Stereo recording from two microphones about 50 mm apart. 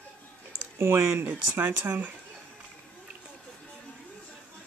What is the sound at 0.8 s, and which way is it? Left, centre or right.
Speech, right.